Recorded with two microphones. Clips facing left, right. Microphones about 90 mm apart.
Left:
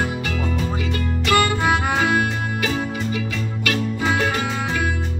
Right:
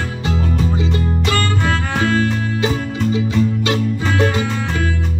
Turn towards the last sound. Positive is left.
turn(degrees=-25)  # may be behind; listen again after turning